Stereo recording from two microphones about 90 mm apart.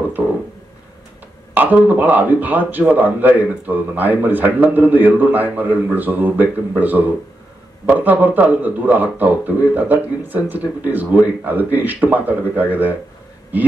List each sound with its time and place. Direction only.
1.5 s speech: 20° right (ahead or behind)